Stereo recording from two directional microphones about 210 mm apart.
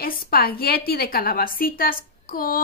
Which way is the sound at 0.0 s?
45° left (ahead or behind).